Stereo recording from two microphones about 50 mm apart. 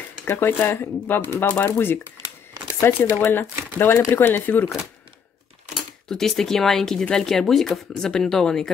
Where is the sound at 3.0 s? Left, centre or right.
Left.